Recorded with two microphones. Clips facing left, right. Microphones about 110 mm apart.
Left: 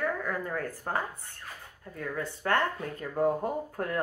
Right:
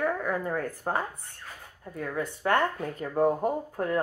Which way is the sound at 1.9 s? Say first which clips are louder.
Right 3 dB; 15° right (ahead or behind).